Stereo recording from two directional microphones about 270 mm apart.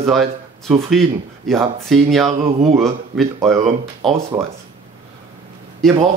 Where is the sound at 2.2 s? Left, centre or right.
Right.